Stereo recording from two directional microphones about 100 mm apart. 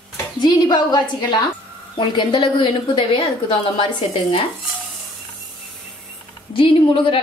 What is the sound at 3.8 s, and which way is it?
Speech, 70° left (ahead or behind).